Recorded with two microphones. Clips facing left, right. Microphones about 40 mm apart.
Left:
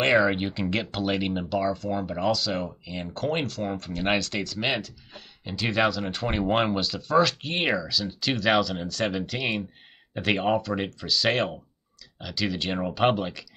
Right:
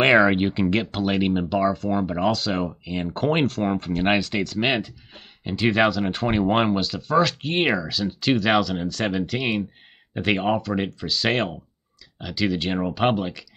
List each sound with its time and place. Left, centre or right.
0.2 s speech: centre
0.7 s speech: centre
2.1 s speech: centre; by 3.9 s right
4.0 s speech: centre
4.6 s speech: right; by 13.5 s centre